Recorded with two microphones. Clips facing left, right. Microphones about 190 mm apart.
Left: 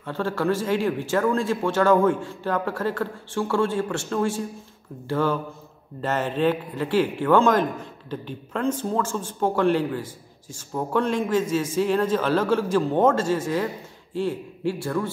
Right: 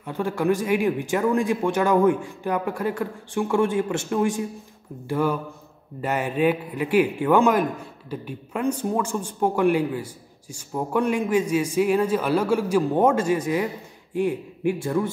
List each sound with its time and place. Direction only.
0.0 s a man's voice: 15° right (ahead or behind)